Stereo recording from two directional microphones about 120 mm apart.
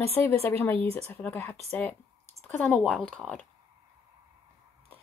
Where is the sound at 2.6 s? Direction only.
5° right (ahead or behind).